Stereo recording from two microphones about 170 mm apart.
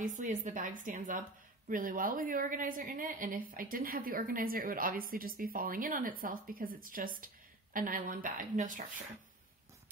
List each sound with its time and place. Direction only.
0.0 s a woman's voice: 50° right (ahead or behind)